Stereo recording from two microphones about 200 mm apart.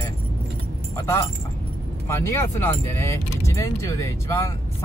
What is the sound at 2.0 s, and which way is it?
Speech, 15° left (ahead or behind).